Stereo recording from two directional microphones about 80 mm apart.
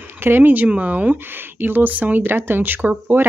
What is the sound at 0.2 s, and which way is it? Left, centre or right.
Speech, right.